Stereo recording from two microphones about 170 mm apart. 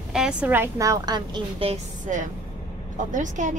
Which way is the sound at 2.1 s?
45° right (ahead or behind).